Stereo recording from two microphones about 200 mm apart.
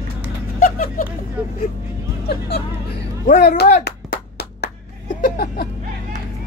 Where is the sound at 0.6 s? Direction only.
45° left (ahead or behind).